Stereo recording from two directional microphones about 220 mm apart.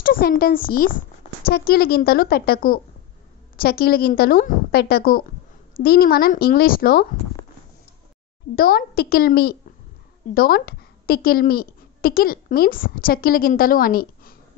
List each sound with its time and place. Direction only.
0.0 s a woman's voice: 40° left (ahead or behind)
8.5 s a woman's voice: 45° left (ahead or behind)